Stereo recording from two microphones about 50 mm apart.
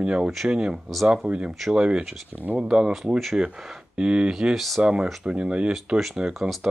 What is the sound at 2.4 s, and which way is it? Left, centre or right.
Speech, right.